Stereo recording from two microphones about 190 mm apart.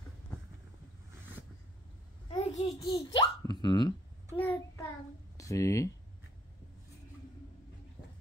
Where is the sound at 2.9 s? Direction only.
25° left (ahead or behind).